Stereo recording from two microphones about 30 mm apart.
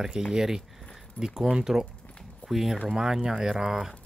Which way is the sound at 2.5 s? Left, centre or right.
Centre.